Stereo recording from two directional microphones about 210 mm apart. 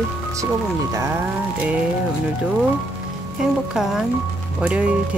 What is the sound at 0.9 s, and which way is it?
Speech, 15° right (ahead or behind).